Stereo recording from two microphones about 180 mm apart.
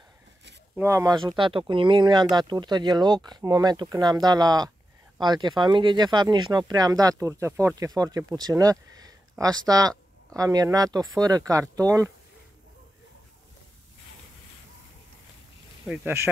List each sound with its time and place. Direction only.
0.7 s speech: 15° right (ahead or behind)
15.9 s speech: 10° right (ahead or behind)